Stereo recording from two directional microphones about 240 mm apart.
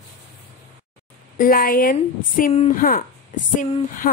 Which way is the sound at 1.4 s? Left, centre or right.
Left.